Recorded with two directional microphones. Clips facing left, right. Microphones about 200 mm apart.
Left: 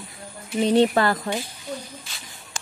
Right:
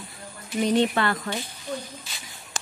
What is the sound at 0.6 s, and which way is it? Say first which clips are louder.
Speech: left 4 dB; 35° left (ahead or behind).